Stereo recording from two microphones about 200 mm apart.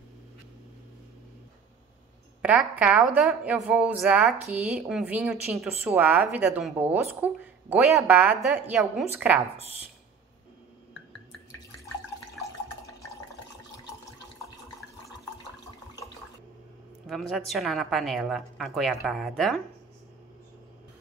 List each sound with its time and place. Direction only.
2.4 s a woman's voice: 5° right (ahead or behind)
17.0 s a woman's voice: centre (ahead or behind)